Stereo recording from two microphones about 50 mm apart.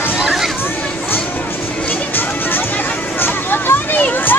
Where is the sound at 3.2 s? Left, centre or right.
Left.